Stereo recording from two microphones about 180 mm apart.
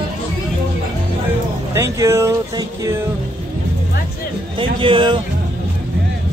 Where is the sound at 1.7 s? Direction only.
15° right (ahead or behind).